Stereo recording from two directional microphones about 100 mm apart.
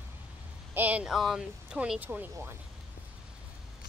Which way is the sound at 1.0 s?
5° right (ahead or behind).